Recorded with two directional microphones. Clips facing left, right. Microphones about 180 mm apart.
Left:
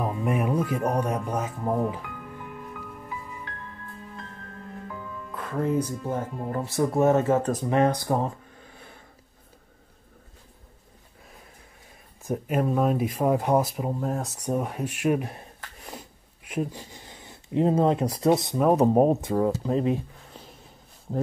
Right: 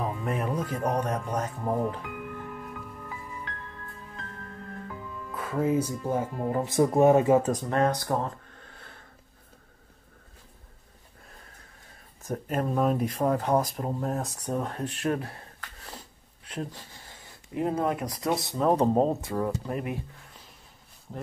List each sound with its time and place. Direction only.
0.2 s speech: 10° left (ahead or behind)
5.3 s speech: 5° right (ahead or behind)
7.7 s speech: 15° left (ahead or behind)
12.2 s speech: 10° left (ahead or behind)
14.4 s speech: 10° left (ahead or behind)
19.6 s a sound: 25° left (ahead or behind)